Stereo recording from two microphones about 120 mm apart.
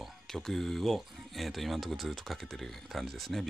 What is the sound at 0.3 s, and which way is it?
Speech, centre (ahead or behind).